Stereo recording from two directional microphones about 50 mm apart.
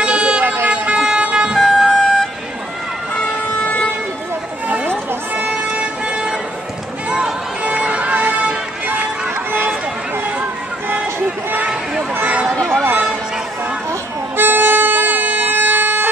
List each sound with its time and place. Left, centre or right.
0.0 s vehicle: right
1.6 s emergency vehicle: centre
5.8 s vehicle: centre
7.1 s music: centre
12.3 s a sound: right
14.3 s music: right